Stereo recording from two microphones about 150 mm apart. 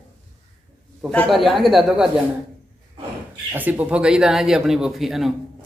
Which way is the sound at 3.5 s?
10° right (ahead or behind).